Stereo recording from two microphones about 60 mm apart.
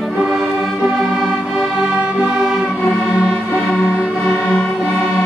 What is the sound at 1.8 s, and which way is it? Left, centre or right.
Music, centre.